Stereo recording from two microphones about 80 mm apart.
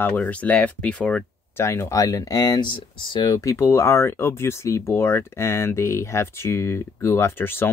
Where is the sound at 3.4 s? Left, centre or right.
Left.